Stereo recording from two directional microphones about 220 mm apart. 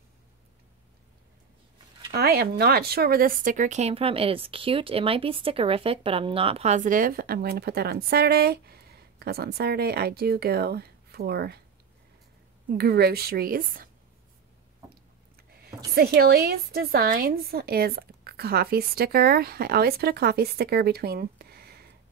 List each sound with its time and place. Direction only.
2.1 s speech: 45° right (ahead or behind)
12.7 s speech: 45° right (ahead or behind)
15.9 s speech: 45° right (ahead or behind)